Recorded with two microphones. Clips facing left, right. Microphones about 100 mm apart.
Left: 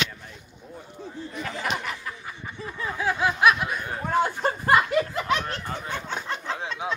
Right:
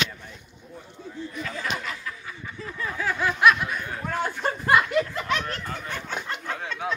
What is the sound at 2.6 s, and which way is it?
Snicker, 20° left (ahead or behind).